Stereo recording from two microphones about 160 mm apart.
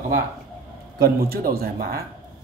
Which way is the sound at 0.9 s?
70° right (ahead or behind).